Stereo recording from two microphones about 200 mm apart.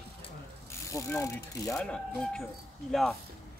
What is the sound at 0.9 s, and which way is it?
Speech, 15° left (ahead or behind).